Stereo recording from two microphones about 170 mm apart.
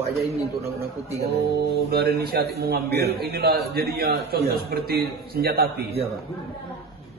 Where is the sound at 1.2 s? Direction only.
70° right (ahead or behind).